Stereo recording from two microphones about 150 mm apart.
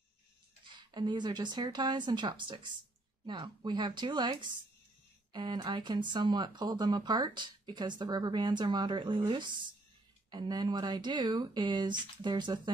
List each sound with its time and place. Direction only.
0.7 s speech: 30° right (ahead or behind)
10.3 s speech: 30° right (ahead or behind)